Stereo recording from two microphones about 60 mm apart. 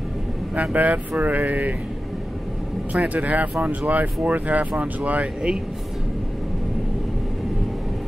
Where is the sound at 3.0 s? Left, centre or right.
Right.